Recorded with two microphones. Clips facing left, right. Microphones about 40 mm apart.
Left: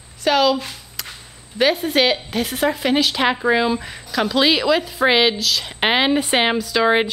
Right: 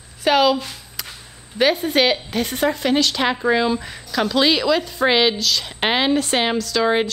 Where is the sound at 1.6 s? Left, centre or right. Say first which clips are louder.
Even; centre.